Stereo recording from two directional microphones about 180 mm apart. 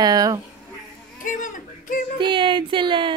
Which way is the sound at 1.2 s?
45° left (ahead or behind).